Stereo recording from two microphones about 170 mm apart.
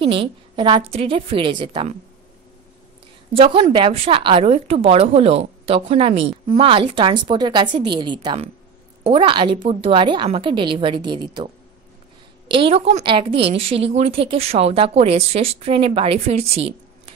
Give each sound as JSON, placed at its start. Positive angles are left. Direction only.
{"t": 0.0, "sound": "a woman's voice", "side_deg": -30}
{"t": 3.3, "sound": "a woman's voice", "side_deg": -30}